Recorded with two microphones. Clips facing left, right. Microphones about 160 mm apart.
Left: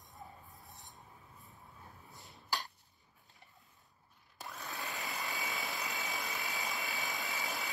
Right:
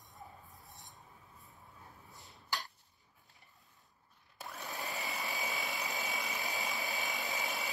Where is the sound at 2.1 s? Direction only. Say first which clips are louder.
Left 1 dB; centre (ahead or behind).